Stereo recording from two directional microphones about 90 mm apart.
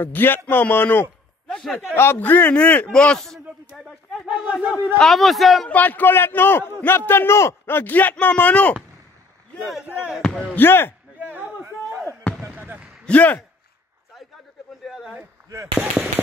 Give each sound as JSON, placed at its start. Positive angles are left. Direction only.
{"t": 0.0, "sound": "a man's voice", "side_deg": 20}
{"t": 1.5, "sound": "a man's voice", "side_deg": 10}
{"t": 2.0, "sound": "a man's voice", "side_deg": 25}
{"t": 4.3, "sound": "speech", "side_deg": -10}
{"t": 4.9, "sound": "a man's voice", "side_deg": 0}
{"t": 5.7, "sound": "a man's voice", "side_deg": 20}
{"t": 10.5, "sound": "a man's voice", "side_deg": 25}
{"t": 11.1, "sound": "a sound", "side_deg": -20}
{"t": 12.4, "sound": "basketball bounce", "side_deg": -20}
{"t": 13.0, "sound": "speech", "side_deg": 15}
{"t": 14.9, "sound": "a sound", "side_deg": -5}
{"t": 15.5, "sound": "speech", "side_deg": -30}